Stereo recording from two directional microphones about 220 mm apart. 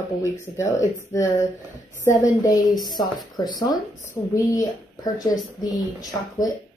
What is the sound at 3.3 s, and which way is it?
Speech, 15° left (ahead or behind).